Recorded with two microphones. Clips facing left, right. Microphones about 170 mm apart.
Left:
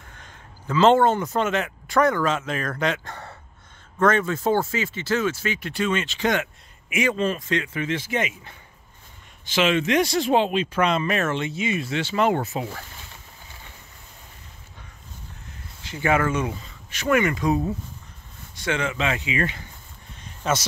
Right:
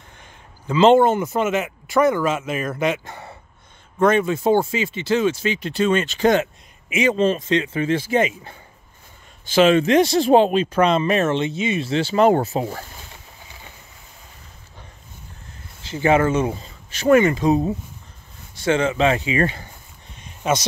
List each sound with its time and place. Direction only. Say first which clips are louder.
0.2 s speech: even; 15° right (ahead or behind)
5.9 s speech: right 6 dB; 40° right (ahead or behind)
15.8 s speech: right 5 dB; 30° right (ahead or behind)
20.2 s a sound: right 3 dB; 15° right (ahead or behind)